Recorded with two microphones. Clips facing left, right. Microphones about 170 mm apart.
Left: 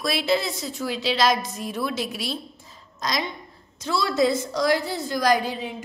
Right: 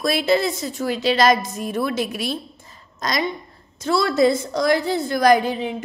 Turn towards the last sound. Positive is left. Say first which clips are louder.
# right 6 dB
turn(degrees=-60)  # may be behind; listen again after turning